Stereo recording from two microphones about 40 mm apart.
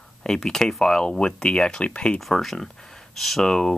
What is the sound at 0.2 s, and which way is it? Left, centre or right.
Speech, centre.